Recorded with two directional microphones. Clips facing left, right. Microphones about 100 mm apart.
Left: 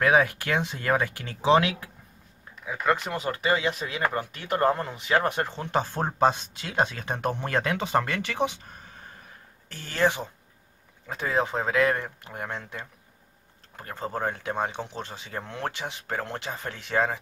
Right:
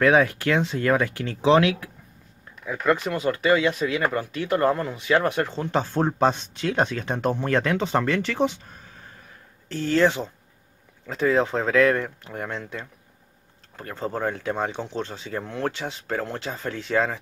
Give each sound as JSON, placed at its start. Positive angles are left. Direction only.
{"t": 0.0, "sound": "speech", "side_deg": 15}
{"t": 2.6, "sound": "speech", "side_deg": 10}
{"t": 3.1, "sound": "speech", "side_deg": 20}
{"t": 9.9, "sound": "speech", "side_deg": 15}
{"t": 13.9, "sound": "speech", "side_deg": 20}